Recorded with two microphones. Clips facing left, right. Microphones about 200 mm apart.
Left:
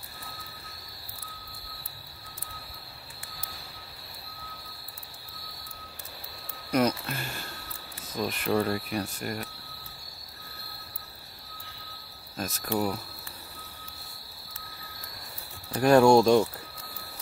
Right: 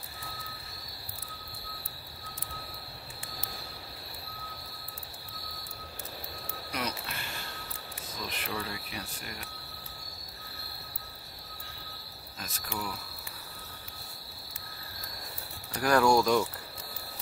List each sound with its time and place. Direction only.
6.7 s speech: 45° left (ahead or behind)
12.4 s speech: 45° left (ahead or behind)
15.7 s speech: 25° left (ahead or behind)